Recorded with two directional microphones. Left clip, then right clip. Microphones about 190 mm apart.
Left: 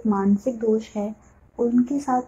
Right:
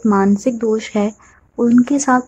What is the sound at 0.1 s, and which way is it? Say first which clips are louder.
Speech: right 7 dB; 25° right (ahead or behind).